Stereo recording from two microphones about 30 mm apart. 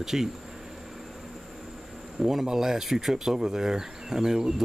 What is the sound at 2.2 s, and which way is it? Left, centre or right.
Speech, centre.